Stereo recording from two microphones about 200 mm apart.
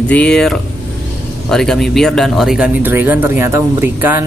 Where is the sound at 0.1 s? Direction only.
5° left (ahead or behind).